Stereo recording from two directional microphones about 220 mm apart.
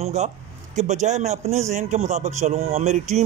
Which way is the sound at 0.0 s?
30° right (ahead or behind).